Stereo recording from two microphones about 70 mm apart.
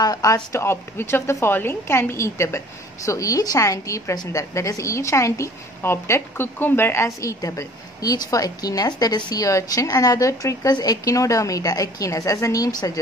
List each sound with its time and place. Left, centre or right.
0.0 s a woman's voice: left
0.5 s a woman's voice: left
9.5 s a woman's voice: left
10.7 s a woman's voice: left